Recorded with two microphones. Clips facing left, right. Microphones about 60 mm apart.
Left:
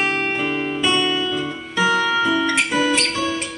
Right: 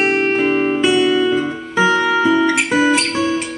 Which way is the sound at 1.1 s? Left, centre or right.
Right.